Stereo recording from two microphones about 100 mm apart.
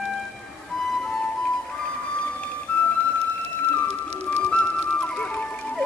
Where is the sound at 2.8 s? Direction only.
20° left (ahead or behind).